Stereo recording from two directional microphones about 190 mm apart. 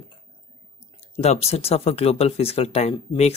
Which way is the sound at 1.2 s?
35° left (ahead or behind).